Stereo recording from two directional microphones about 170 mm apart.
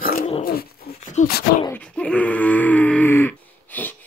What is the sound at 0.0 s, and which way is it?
Dog, 55° left (ahead or behind).